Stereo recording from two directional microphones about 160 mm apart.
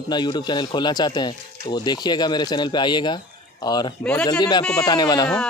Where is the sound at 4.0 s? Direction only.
5° left (ahead or behind).